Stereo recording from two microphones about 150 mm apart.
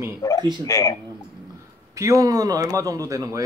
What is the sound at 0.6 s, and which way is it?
Speech, 20° left (ahead or behind).